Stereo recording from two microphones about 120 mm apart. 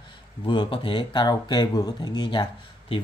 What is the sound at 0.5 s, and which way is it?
Speech, 45° left (ahead or behind).